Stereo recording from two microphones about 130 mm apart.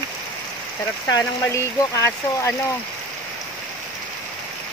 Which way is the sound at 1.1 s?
25° left (ahead or behind).